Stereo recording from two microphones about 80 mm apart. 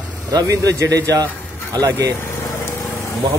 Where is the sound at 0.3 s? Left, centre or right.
Right.